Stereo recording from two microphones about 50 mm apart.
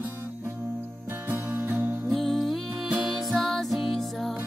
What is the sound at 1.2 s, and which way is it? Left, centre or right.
Music, right.